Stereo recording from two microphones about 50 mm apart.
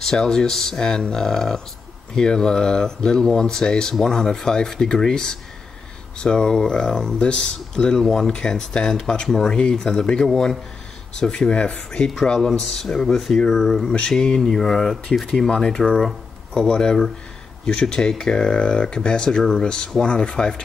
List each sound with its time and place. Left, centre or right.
0.0 s speech: centre
12.1 s speech: centre